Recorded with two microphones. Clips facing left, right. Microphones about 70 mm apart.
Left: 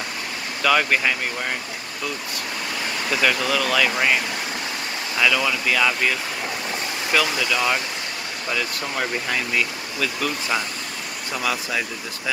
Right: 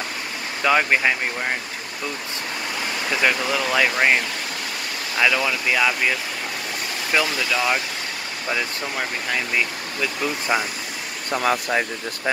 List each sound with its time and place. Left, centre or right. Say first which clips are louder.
0.6 s speech: right 1 dB; right
3.1 s speech: even; centre
5.1 s speech: even; centre
9.5 s speech: even; centre
11.4 s speech: right 4 dB; right